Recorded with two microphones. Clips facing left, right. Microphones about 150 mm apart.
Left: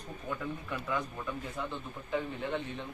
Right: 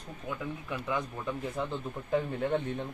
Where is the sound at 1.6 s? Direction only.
30° right (ahead or behind).